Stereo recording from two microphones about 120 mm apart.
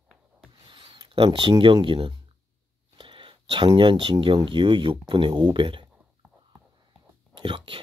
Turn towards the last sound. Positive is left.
turn(degrees=-40)  # may be behind; listen again after turning